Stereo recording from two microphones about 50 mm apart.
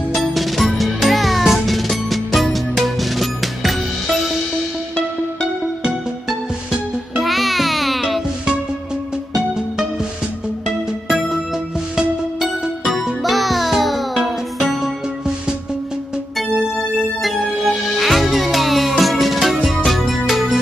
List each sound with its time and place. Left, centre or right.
0.1 s music: centre
5.9 s music: centre
7.2 s music: centre
11.1 s music: centre
17.2 s music: centre